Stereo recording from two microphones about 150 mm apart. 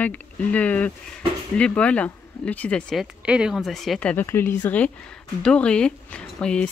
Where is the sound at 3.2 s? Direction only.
5° right (ahead or behind).